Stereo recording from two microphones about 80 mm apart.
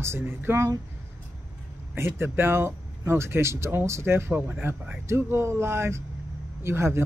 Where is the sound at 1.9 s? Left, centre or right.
Right.